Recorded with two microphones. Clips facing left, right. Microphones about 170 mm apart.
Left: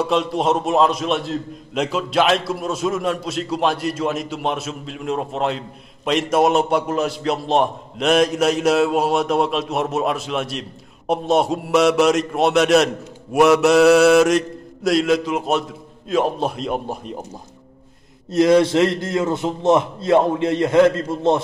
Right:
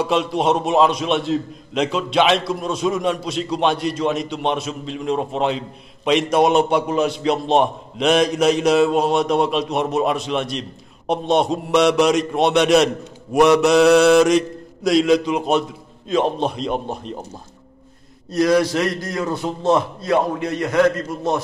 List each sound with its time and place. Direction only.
0.0 s a man's voice: centre (ahead or behind)
18.3 s a man's voice: 25° left (ahead or behind)